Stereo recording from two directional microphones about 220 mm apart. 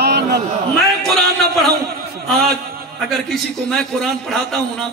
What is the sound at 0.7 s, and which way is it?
A man's voice, centre (ahead or behind).